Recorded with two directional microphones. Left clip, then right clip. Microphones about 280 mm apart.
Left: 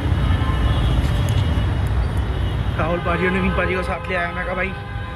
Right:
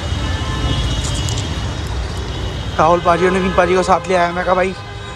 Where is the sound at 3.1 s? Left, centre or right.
Right.